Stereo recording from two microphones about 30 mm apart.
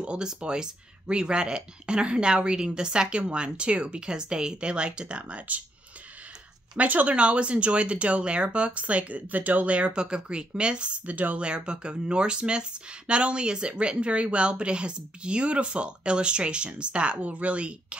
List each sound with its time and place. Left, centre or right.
0.0 s speech: right
6.8 s speech: right
7.2 s speech: right
9.3 s speech: right
9.7 s speech: right
11.1 s speech: right
11.3 s speech: right
17.2 s speech: right